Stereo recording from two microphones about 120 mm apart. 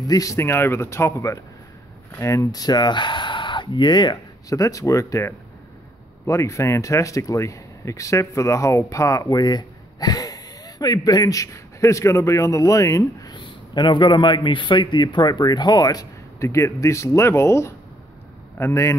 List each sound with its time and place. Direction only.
0.0 s speech: 30° left (ahead or behind)